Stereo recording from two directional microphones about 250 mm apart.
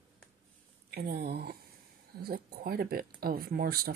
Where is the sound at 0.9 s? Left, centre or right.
Right.